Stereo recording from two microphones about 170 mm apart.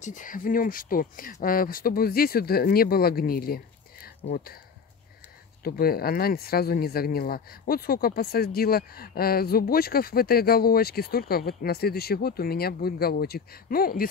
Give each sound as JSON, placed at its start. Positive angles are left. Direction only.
{"t": 0.0, "sound": "speech", "side_deg": 50}
{"t": 5.6, "sound": "speech", "side_deg": 60}